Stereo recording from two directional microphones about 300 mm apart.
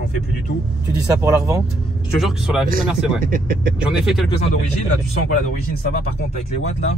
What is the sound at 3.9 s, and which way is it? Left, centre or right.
Speech, centre.